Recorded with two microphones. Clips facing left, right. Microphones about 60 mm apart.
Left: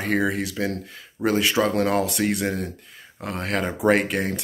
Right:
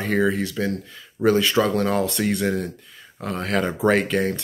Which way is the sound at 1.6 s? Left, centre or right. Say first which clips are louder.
Right 1 dB; left.